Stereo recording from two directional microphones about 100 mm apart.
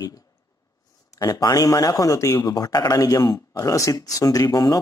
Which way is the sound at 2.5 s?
45° left (ahead or behind).